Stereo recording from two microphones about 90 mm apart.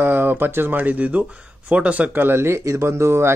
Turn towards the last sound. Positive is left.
turn(degrees=-30)  # may be behind; listen again after turning